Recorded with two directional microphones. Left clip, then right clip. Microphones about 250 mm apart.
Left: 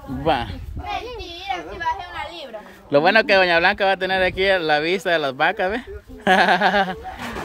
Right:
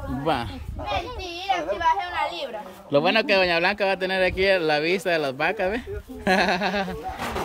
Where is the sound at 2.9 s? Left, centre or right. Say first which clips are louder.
Left 5 dB; centre.